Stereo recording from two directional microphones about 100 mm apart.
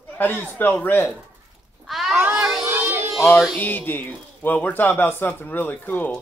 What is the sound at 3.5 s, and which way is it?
A man's voice, 20° left (ahead or behind).